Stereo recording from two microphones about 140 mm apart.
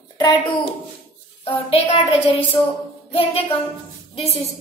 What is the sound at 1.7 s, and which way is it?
Speech, 40° left (ahead or behind).